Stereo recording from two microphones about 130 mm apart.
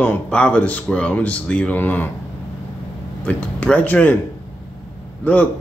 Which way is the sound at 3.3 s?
10° left (ahead or behind).